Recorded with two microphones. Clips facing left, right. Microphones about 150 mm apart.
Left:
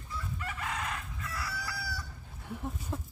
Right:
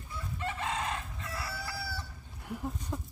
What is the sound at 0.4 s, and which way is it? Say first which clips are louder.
Chicken: right 5 dB; 25° right (ahead or behind).